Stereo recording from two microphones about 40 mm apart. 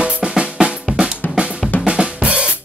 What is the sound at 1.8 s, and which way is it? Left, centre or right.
Drum kit, right.